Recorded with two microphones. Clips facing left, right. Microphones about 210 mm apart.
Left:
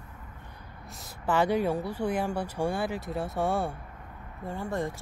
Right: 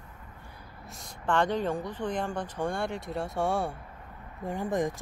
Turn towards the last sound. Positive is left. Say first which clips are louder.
# right 3 dB
turn(degrees=-15)  # may be behind; listen again after turning